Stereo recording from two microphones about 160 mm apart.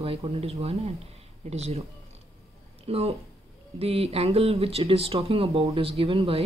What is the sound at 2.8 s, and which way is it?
Speech, 40° right (ahead or behind).